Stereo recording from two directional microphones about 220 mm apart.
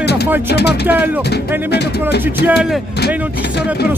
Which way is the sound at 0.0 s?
50° left (ahead or behind).